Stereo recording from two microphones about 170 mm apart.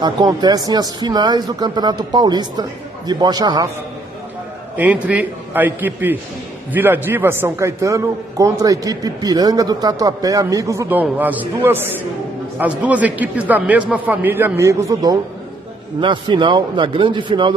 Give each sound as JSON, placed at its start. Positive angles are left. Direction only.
{"t": 0.0, "sound": "a man's voice", "side_deg": -25}
{"t": 4.7, "sound": "a man's voice", "side_deg": -10}